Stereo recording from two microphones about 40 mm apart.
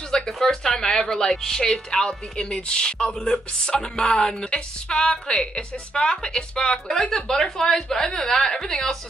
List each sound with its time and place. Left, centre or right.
0.1 s speech: centre
2.3 s speech: left